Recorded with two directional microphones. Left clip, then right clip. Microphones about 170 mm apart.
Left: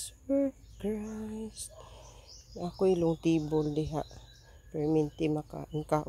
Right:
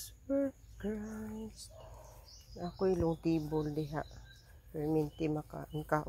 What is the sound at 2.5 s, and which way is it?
Speech, 35° left (ahead or behind).